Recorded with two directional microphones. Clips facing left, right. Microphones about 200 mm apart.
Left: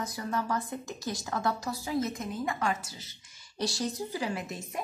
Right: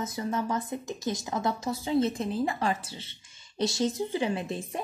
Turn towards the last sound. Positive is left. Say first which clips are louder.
# right 4 dB
turn(degrees=-30)  # may be behind; listen again after turning